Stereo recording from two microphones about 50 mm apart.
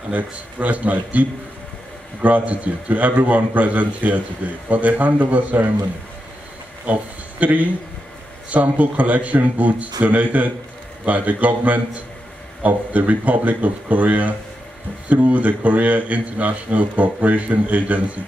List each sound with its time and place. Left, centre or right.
0.1 s a man's voice: right
2.2 s a man's voice: right
6.9 s a man's voice: right